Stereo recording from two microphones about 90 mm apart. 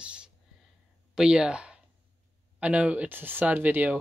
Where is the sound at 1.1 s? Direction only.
10° right (ahead or behind).